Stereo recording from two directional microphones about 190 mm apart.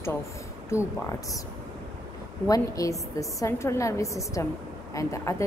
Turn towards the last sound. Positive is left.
turn(degrees=15)  # may be behind; listen again after turning